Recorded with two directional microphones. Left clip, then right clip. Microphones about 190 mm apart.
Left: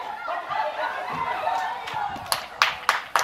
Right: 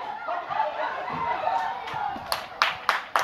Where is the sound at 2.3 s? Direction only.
45° left (ahead or behind).